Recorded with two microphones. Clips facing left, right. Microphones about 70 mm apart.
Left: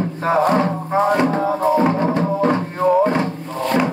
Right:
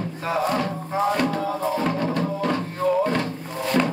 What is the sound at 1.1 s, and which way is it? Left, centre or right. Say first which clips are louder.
Music: left 6 dB; left.